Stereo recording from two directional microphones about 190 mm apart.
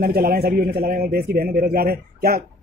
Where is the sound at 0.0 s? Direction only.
50° right (ahead or behind).